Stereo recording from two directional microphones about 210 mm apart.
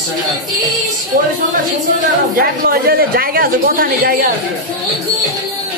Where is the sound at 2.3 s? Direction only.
45° right (ahead or behind).